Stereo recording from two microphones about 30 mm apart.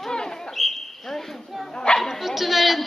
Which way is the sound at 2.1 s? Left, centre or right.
Centre.